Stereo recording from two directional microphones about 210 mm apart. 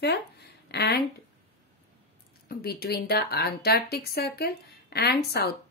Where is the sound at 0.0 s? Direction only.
50° left (ahead or behind).